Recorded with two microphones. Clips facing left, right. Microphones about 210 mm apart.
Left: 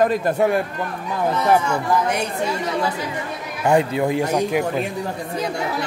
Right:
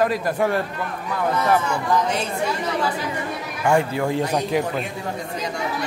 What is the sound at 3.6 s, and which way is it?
Speech, 20° left (ahead or behind).